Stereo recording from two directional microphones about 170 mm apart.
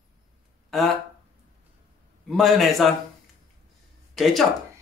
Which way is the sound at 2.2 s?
Centre (ahead or behind).